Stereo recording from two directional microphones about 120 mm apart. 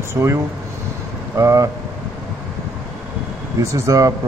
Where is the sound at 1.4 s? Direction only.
25° right (ahead or behind).